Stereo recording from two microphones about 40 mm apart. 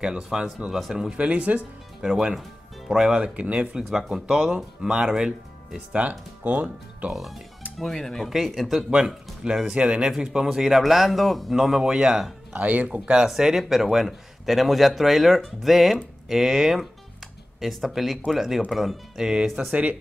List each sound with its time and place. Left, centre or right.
0.0 s speech: centre
1.1 s speech: right
2.0 s speech: centre
3.3 s speech: right
3.7 s speech: centre
5.9 s speech: right
7.8 s speech: centre
8.5 s a man's voice: centre
9.0 s speech: centre
10.1 s a man's voice: centre
12.5 s speech: right
12.8 s speech: right
13.3 s a man's voice: centre
19.7 s speech: right